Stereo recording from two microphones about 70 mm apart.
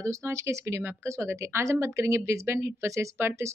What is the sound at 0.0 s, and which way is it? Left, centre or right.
Speech, right.